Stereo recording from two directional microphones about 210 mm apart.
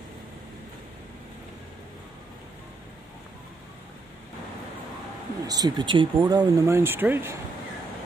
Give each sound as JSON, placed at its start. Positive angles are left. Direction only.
{"t": 5.5, "sound": "speech", "side_deg": -20}